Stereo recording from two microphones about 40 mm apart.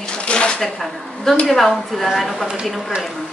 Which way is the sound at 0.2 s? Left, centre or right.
Left.